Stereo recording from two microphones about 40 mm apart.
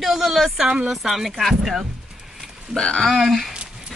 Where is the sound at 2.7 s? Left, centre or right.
Centre.